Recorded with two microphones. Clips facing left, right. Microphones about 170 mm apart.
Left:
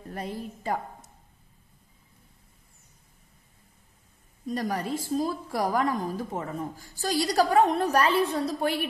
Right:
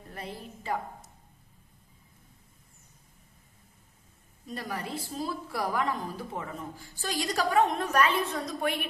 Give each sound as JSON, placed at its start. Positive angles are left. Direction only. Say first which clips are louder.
{"t": 0.1, "sound": "a woman's voice", "louder": "left 6 dB", "side_deg": 45}
{"t": 4.5, "sound": "a woman's voice", "louder": "left 7 dB", "side_deg": 40}